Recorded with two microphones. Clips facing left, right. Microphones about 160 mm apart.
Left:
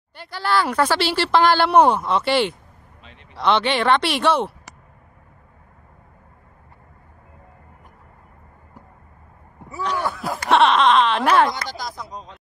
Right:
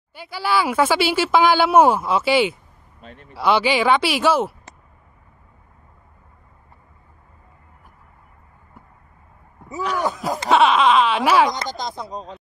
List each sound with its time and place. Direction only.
0.1 s speech: 5° right (ahead or behind)
3.0 s a sound: 45° right (ahead or behind)
3.3 s speech: 5° right (ahead or behind)
9.8 s speech: 10° right (ahead or behind)
10.5 s speech: centre (ahead or behind)
11.8 s speech: 30° right (ahead or behind)